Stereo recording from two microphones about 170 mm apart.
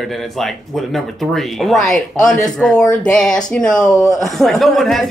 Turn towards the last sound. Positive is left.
turn(degrees=0)  # may be behind; listen again after turning